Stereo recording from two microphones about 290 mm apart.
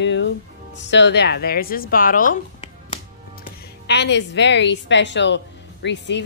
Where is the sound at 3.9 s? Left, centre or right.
Left.